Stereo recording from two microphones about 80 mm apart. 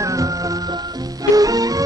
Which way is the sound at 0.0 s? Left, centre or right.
Right.